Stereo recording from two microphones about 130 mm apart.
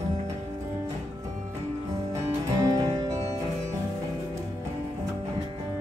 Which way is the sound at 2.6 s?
30° right (ahead or behind).